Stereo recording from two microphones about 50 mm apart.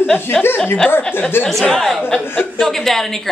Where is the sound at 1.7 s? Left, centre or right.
Centre.